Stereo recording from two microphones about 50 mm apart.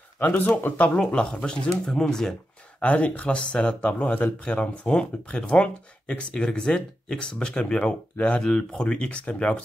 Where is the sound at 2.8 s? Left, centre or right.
Left.